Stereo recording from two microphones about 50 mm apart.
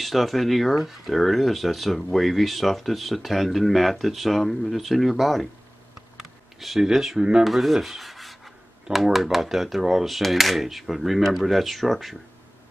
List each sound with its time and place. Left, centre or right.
0.0 s speech: centre
6.1 s a sound: centre
7.4 s rub: centre
8.9 s speech: centre